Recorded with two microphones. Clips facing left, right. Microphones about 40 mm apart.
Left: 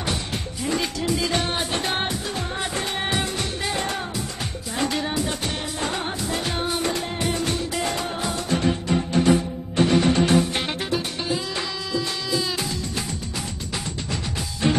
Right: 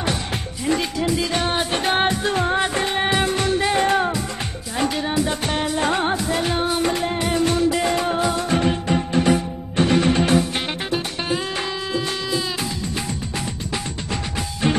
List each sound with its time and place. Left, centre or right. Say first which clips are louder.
0.7 s speech: right 4 dB; centre
1.4 s music: right 4 dB; centre
2.2 s music: right 8 dB; right
2.7 s music: right 5 dB; right
4.7 s music: right 3 dB; centre
5.5 s music: right 7 dB; right
6.3 s music: right 4 dB; centre
12.4 s music: right 1 dB; centre